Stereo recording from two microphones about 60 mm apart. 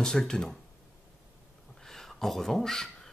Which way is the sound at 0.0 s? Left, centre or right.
Centre.